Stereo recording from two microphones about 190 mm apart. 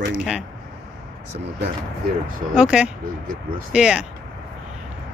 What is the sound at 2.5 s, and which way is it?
Speech, 5° right (ahead or behind).